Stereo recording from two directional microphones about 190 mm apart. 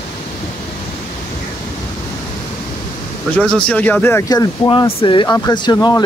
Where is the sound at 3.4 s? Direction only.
5° left (ahead or behind).